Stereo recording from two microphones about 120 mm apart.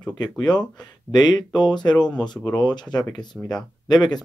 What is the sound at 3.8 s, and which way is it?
Speech, 35° left (ahead or behind).